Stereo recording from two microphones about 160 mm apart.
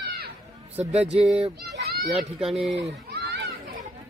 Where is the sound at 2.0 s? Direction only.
Centre (ahead or behind).